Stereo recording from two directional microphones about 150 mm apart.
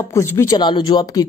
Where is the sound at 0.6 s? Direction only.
30° left (ahead or behind).